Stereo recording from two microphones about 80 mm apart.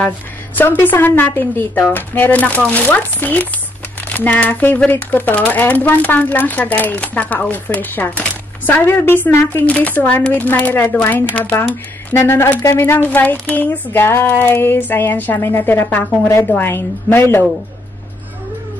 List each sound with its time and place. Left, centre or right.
0.6 s a woman's voice: left